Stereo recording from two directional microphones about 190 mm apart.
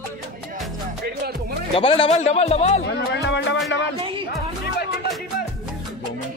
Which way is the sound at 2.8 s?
60° left (ahead or behind).